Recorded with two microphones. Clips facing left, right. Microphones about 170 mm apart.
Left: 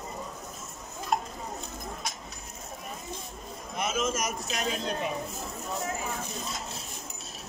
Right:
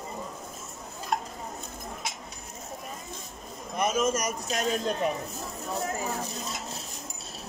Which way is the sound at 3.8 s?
45° right (ahead or behind).